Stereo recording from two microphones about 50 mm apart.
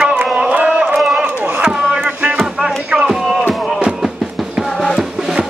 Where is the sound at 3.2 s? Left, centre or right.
Centre.